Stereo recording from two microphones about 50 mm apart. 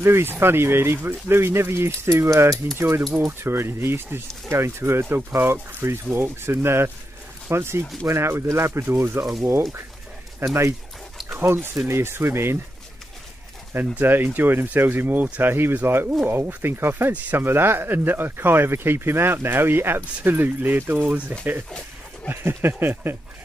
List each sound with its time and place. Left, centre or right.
0.0 s speech: right
3.3 s speech: right
4.5 s speech: right
11.3 s speech: right
13.7 s speech: right
21.6 s a sound: centre
22.3 s speech: right